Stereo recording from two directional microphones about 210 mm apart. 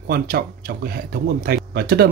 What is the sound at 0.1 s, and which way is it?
Speech, 45° right (ahead or behind).